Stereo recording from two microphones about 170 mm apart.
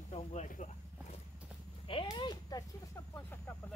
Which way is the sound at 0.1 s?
45° left (ahead or behind).